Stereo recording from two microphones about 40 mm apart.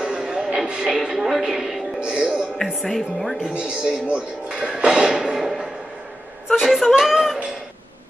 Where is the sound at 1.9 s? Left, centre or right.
Right.